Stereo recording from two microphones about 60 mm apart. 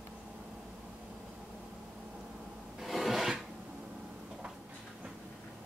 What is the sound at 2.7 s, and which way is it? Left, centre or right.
Filing, centre.